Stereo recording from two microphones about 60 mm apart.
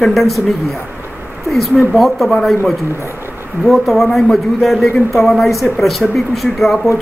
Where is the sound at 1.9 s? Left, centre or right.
Centre.